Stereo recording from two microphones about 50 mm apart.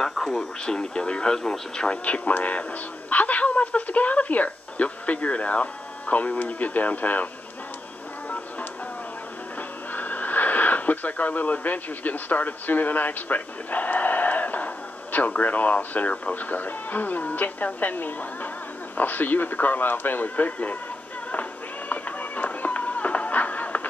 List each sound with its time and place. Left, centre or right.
0.0 s radio: centre
0.7 s speech: centre; by 7.2 s left
9.9 s speech: left
21.3 s music: left